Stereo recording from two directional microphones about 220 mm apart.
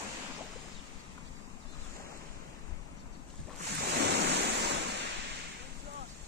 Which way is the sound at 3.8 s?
50° right (ahead or behind).